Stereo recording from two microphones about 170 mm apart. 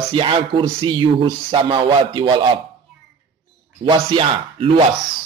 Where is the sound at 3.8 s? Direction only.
30° right (ahead or behind).